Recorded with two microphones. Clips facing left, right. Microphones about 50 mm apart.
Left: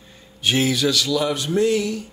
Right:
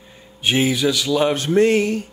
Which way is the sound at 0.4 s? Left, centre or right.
Centre.